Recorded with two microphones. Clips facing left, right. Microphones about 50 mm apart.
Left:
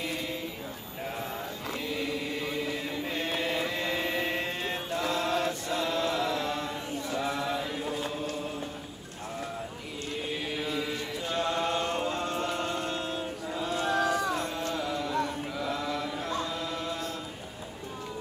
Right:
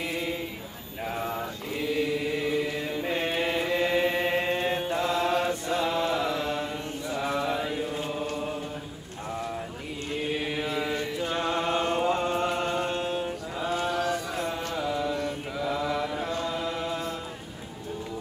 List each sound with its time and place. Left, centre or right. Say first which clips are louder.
0.0 s a sound: right 3 dB; centre
1.0 s mantra: right 5 dB; centre
1.9 s chant: right 7 dB; centre
7.1 s mantra: right 3 dB; centre
10.3 s chant: right 2 dB; centre
14.7 s music: right 3 dB; centre
15.5 s chant: right 7 dB; centre